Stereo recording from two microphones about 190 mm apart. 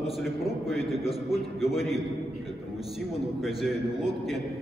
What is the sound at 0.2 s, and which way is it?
A man's voice, centre (ahead or behind).